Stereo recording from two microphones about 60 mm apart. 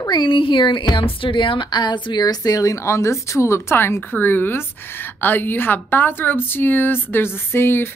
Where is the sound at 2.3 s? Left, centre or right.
Left.